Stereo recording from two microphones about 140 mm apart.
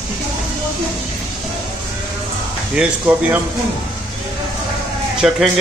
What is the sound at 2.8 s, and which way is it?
Speech, 15° right (ahead or behind).